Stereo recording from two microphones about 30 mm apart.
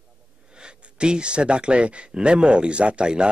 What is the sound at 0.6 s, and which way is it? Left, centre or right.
A man's voice, right.